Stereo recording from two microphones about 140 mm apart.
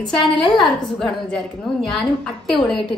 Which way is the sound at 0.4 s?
Centre (ahead or behind).